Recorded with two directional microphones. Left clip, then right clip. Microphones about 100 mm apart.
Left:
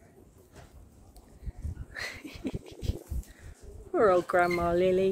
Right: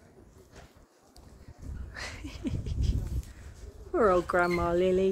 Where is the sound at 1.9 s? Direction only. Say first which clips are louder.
Left 2 dB; 20° right (ahead or behind).